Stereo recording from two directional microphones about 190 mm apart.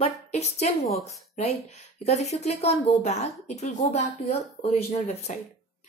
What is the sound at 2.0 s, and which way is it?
A woman's voice, 35° left (ahead or behind).